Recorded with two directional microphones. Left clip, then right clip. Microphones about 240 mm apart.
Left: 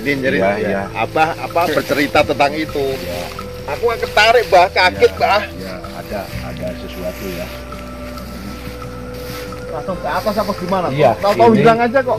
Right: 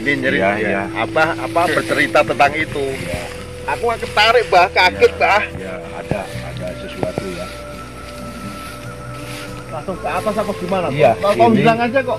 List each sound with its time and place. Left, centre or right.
0.0 s speech: left
0.5 s speech: left
4.1 s speech: centre
10.1 s speech: centre